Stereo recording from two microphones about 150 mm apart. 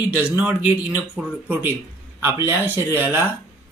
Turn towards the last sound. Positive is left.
turn(degrees=-15)  # may be behind; listen again after turning